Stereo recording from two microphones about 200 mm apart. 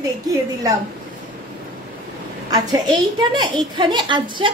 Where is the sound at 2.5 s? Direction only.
20° right (ahead or behind).